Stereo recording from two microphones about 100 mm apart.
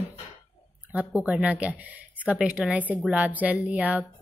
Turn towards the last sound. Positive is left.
turn(degrees=-15)  # may be behind; listen again after turning